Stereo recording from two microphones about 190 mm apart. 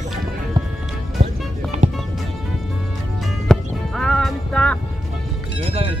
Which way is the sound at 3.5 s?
5° left (ahead or behind).